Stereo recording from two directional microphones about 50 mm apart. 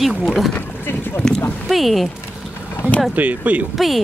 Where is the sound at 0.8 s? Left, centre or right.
Left.